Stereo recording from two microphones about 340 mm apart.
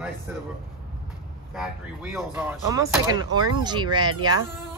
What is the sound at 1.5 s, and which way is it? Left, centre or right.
Speech, centre.